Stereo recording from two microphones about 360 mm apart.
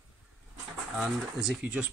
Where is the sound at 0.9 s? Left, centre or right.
Centre.